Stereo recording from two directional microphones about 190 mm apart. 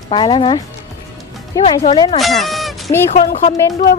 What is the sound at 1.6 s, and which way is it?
Speech, 25° left (ahead or behind).